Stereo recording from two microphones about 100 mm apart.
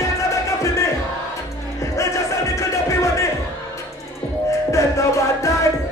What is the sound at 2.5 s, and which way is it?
Music, 30° left (ahead or behind).